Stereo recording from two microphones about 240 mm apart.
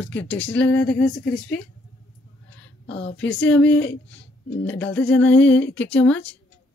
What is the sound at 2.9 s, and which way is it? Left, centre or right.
Speech, left.